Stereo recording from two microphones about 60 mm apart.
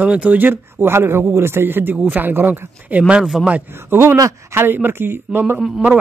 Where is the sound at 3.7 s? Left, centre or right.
Right.